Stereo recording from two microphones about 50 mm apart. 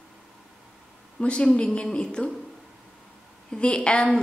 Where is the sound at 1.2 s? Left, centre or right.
Centre.